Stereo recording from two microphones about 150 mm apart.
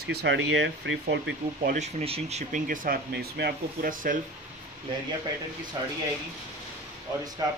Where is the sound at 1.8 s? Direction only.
45° right (ahead or behind); by 4.2 s 65° right (ahead or behind).